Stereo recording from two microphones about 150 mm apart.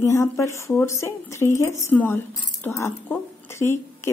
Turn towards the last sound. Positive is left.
turn(degrees=15)  # may be behind; listen again after turning